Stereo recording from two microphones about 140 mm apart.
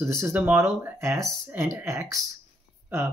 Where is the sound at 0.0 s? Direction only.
20° right (ahead or behind).